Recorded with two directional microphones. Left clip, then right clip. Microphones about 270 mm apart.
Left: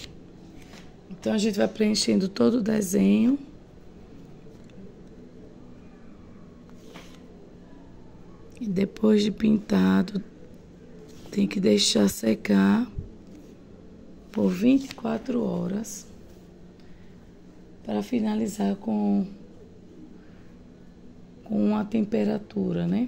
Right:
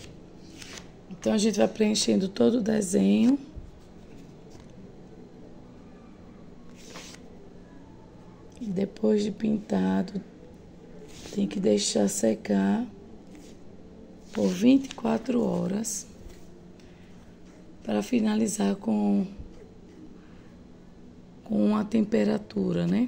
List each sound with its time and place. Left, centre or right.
1.2 s speech: centre
8.7 s speech: centre
11.3 s speech: centre
14.3 s speech: centre
14.6 s speech: centre
17.8 s speech: centre
21.5 s speech: centre